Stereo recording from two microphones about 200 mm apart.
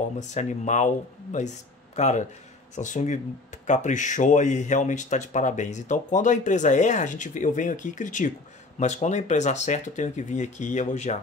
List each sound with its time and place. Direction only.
0.2 s speech: 35° left (ahead or behind)